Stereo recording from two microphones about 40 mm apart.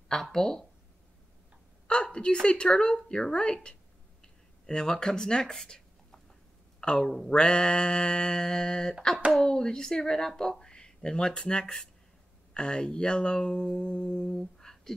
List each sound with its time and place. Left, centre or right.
0.1 s speech: centre
2.1 s speech: left